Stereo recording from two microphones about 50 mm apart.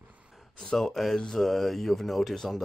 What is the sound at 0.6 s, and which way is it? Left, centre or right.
Speech, centre.